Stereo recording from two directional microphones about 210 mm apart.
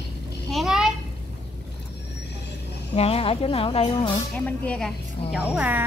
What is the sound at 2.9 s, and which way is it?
Speech, 30° left (ahead or behind).